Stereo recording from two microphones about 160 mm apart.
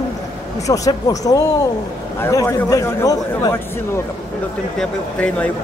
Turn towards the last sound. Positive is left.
turn(degrees=10)  # may be behind; listen again after turning